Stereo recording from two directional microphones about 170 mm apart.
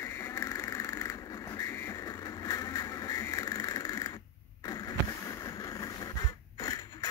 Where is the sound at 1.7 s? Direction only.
15° left (ahead or behind).